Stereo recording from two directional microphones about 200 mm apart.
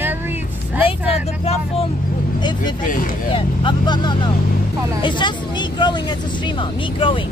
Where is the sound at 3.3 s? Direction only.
25° left (ahead or behind).